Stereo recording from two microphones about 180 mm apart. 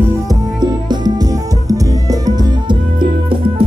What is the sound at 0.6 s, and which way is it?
Music, 20° right (ahead or behind).